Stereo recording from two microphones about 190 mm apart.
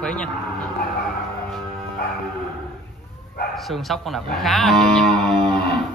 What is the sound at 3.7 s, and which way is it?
Speech, centre (ahead or behind).